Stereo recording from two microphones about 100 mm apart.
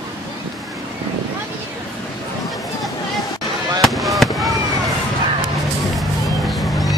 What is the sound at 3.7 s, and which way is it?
Fireworks, centre (ahead or behind).